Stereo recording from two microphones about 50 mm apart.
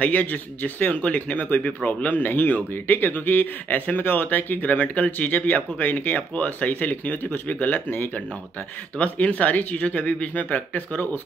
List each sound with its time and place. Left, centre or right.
0.0 s speech: left